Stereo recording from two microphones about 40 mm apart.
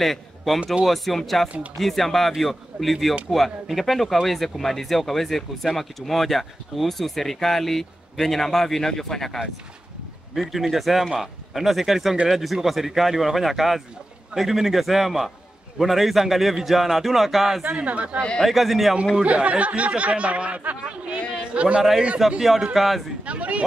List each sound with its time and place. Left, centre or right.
0.0 s a man's voice: centre
10.3 s speech: centre
17.7 s speech: right
18.4 s speech: centre
19.2 s a man's voice: right
22.2 s speech: centre
23.2 s speech: right